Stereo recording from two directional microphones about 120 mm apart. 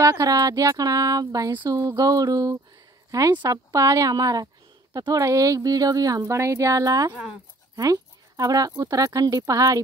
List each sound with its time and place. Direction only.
0.0 s speech: 30° right (ahead or behind)